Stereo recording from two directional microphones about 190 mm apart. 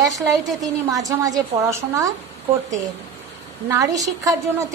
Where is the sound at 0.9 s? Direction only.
20° right (ahead or behind).